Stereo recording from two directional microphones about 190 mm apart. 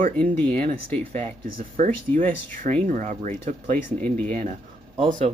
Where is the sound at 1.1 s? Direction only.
40° right (ahead or behind).